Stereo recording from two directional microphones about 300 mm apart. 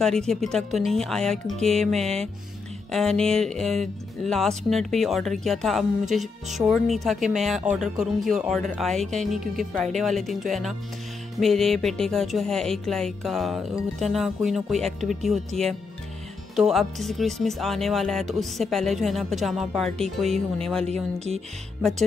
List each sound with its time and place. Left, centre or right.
0.0 s speech: centre
20.8 s speech: right